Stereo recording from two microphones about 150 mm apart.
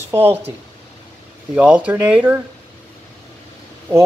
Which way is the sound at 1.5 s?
10° right (ahead or behind).